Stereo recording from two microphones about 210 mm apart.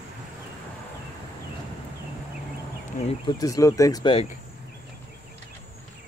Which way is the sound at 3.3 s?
15° left (ahead or behind).